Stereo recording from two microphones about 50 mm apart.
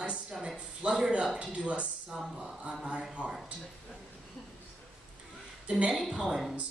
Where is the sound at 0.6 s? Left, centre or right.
Centre.